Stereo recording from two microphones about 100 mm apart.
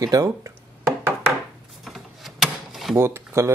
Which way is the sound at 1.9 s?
Centre (ahead or behind).